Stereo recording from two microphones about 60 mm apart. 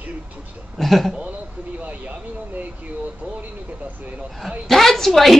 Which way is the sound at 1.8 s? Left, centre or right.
Right.